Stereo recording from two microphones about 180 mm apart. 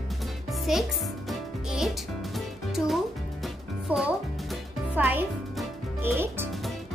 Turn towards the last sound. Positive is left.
turn(degrees=-10)  # may be behind; listen again after turning